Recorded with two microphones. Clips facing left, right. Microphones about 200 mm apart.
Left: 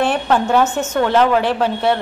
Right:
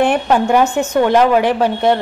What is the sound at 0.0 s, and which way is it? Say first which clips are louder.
A woman's voice: right 3 dB; 15° right (ahead or behind).